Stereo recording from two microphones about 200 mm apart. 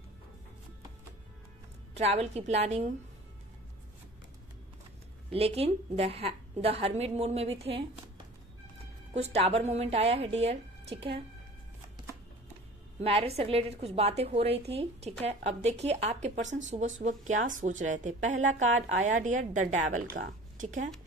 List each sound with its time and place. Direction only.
2.0 s a woman's voice: 30° right (ahead or behind)
5.3 s a woman's voice: 30° right (ahead or behind)
9.1 s a woman's voice: 30° right (ahead or behind)
13.0 s a woman's voice: 30° right (ahead or behind)
18.7 s a woman's voice: 75° right (ahead or behind)
19.1 s a woman's voice: 40° right (ahead or behind)